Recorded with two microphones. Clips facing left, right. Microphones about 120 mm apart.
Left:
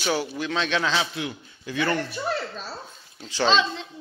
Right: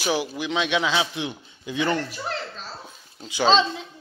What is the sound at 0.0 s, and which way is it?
A man's voice, 10° right (ahead or behind).